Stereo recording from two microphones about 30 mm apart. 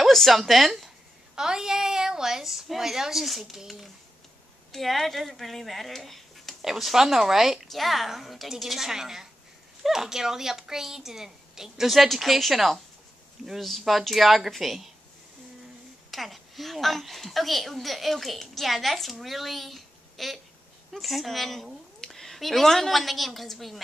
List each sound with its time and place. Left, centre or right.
0.3 s a woman's voice: centre
1.3 s a woman's voice: right
4.7 s a woman's voice: centre
6.6 s a woman's voice: centre
7.6 s a woman's voice: centre
8.8 s a woman's voice: centre
12.1 s a woman's voice: centre
16.1 s a woman's voice: centre